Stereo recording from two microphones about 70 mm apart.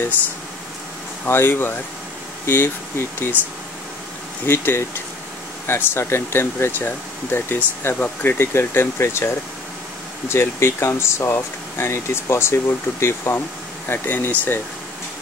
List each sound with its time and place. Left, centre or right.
1.2 s speech: left
4.5 s speech: left